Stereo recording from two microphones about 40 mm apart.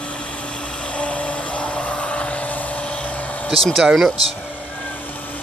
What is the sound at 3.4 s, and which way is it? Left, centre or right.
Speech, centre.